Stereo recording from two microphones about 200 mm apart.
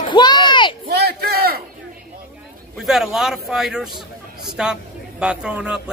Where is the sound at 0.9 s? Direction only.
55° right (ahead or behind).